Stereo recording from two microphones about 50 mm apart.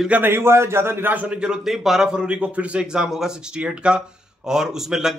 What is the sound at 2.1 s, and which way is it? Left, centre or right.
A man's voice, right.